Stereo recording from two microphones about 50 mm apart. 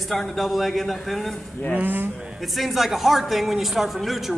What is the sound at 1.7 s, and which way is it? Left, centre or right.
Speech, right.